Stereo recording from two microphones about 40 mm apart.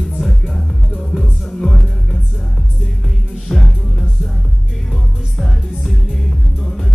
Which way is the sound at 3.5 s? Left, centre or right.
Centre.